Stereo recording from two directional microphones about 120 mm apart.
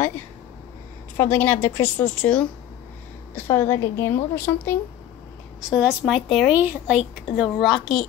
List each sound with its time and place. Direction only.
1.1 s a woman's voice: 20° left (ahead or behind)
3.3 s a woman's voice: 20° left (ahead or behind)
5.8 s a woman's voice: 10° right (ahead or behind)
6.2 s a woman's voice: 5° left (ahead or behind)
6.5 s a woman's voice: 15° right (ahead or behind)
7.3 s a woman's voice: 5° right (ahead or behind)